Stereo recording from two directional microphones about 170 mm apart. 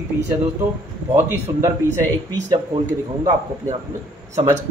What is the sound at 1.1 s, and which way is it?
Speech, 15° right (ahead or behind).